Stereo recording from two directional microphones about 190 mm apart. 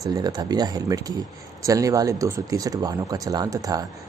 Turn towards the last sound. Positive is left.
turn(degrees=-20)  # may be behind; listen again after turning